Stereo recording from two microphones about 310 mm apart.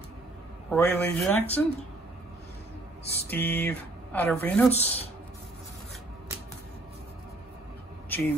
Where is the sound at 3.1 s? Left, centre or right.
Centre.